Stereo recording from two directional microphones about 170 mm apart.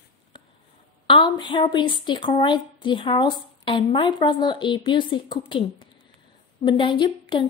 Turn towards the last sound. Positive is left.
turn(degrees=25)  # may be behind; listen again after turning